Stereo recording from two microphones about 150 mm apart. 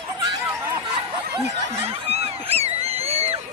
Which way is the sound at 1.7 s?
40° right (ahead or behind).